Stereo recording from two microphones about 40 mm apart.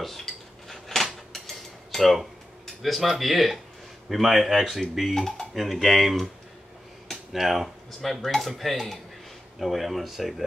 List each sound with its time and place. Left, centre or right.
0.0 s dishes: centre
1.3 s cutlery: centre
4.1 s speech: centre
7.3 s speech: centre